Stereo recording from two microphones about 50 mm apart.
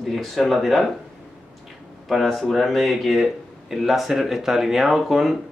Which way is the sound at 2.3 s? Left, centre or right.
Centre.